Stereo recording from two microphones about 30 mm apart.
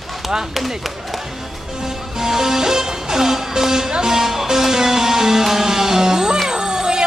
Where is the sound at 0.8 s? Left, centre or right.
Centre.